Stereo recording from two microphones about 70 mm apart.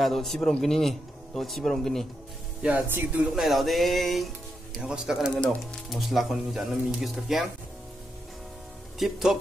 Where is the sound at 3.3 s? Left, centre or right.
Centre.